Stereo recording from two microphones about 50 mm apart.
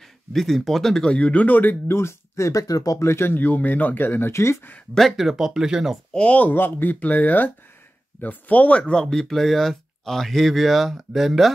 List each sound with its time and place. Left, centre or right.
0.0 s speech: centre
1.0 s speech: left
2.0 s speech: left
3.0 s speech: left
3.3 s speech: left
4.3 s speech: left
4.9 s speech: centre
6.1 s speech: left
6.5 s speech: left
9.0 s speech: centre